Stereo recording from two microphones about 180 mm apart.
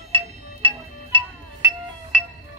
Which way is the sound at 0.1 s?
30° right (ahead or behind).